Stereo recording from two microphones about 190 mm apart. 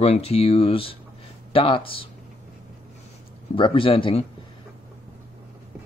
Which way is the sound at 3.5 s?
25° left (ahead or behind).